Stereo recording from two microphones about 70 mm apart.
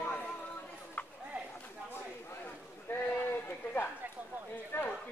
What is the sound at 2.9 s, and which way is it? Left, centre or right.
Speech, left.